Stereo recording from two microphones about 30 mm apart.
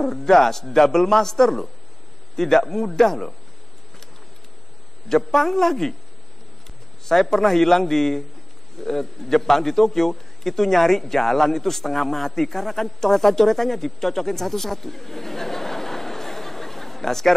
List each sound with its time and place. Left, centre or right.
0.0 s a man's voice: centre
5.0 s a man's voice: centre
7.1 s a man's voice: centre